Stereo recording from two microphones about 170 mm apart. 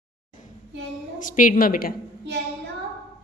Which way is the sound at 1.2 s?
50° left (ahead or behind).